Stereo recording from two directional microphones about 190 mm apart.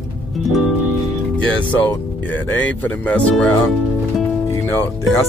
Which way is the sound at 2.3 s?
10° left (ahead or behind).